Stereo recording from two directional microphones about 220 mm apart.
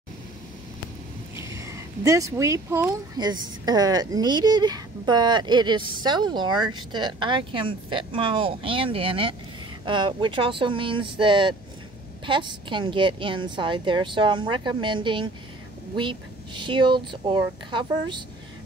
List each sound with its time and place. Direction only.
1.3 s speech: 15° right (ahead or behind)